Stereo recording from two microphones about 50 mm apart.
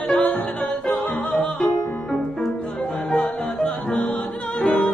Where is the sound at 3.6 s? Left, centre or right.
Centre.